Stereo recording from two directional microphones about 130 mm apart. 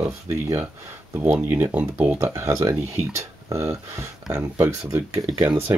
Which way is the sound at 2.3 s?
20° right (ahead or behind).